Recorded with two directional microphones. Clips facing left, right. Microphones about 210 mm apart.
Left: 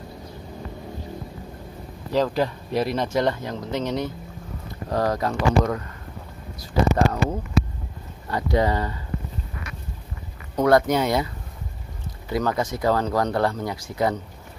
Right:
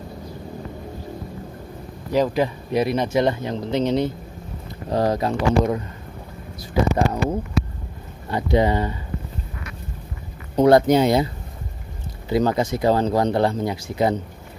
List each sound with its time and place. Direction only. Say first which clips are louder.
2.1 s speech: right 2 dB; 15° right (ahead or behind)
10.5 s speech: right 4 dB; 30° right (ahead or behind)
12.3 s speech: right 4 dB; 25° right (ahead or behind)